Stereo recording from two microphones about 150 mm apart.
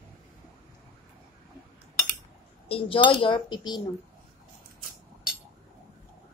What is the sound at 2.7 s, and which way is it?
Speech, 35° left (ahead or behind).